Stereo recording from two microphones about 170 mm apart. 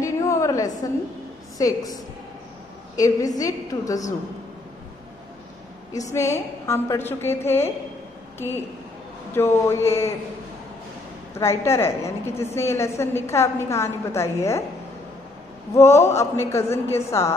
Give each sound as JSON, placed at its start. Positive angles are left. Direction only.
{"t": 0.0, "sound": "a sound", "side_deg": 20}
{"t": 1.6, "sound": "a woman's voice", "side_deg": 20}
{"t": 3.0, "sound": "a woman's voice", "side_deg": 20}
{"t": 5.9, "sound": "a woman's voice", "side_deg": 20}
{"t": 9.3, "sound": "a woman's voice", "side_deg": 15}
{"t": 11.3, "sound": "a woman's voice", "side_deg": 15}
{"t": 15.7, "sound": "a woman's voice", "side_deg": 15}